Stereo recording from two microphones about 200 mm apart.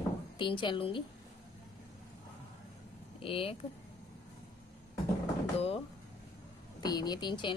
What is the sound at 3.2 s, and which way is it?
Speech, 25° left (ahead or behind).